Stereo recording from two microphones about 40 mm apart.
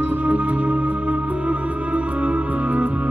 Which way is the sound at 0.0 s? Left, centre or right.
Right.